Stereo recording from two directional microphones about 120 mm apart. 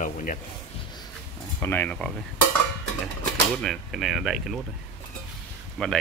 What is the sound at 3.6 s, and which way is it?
Speech, centre (ahead or behind).